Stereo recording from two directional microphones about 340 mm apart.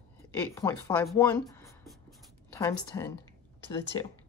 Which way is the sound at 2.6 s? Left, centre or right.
Centre.